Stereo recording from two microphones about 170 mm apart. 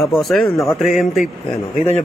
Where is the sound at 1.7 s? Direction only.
40° left (ahead or behind).